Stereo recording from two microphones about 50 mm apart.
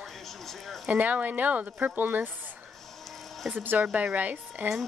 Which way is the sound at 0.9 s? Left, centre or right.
Right.